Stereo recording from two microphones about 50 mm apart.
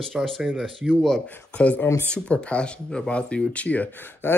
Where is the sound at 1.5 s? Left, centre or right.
Left.